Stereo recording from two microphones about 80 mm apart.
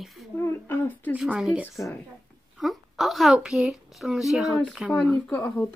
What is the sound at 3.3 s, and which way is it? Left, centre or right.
A child's voice, centre.